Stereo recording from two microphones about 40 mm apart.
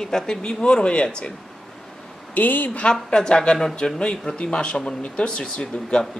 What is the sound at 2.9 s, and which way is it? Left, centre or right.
Speech, centre.